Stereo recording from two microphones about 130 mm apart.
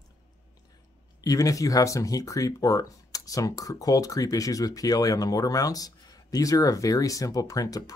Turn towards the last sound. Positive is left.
turn(degrees=25)  # may be behind; listen again after turning